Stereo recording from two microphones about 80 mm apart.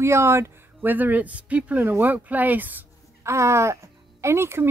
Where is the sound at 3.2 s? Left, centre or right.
Right.